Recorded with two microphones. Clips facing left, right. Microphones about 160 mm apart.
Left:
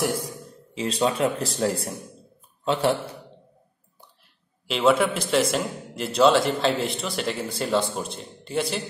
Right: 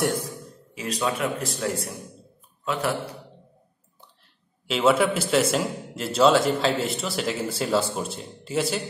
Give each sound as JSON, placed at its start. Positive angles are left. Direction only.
{"t": 0.7, "sound": "speech", "side_deg": 30}
{"t": 4.6, "sound": "a man's voice", "side_deg": 0}